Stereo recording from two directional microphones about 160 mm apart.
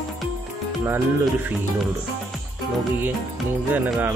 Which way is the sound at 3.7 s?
10° right (ahead or behind).